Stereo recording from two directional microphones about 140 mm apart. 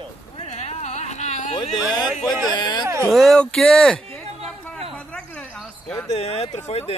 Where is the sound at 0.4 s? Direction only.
50° left (ahead or behind).